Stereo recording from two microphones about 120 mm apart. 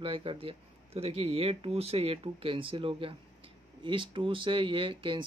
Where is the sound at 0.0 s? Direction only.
50° right (ahead or behind).